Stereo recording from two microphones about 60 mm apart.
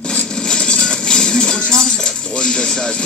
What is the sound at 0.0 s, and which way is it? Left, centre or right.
Music, centre.